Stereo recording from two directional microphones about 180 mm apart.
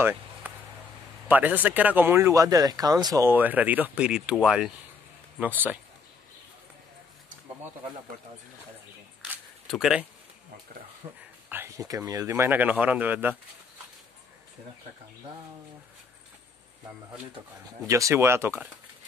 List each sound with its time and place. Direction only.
0.0 s a sound: 10° right (ahead or behind)
1.3 s speech: 10° right (ahead or behind)
9.7 s speech: centre (ahead or behind)
11.0 s speech: 30° right (ahead or behind)
11.4 s speech: 10° right (ahead or behind)
17.8 s speech: 15° right (ahead or behind)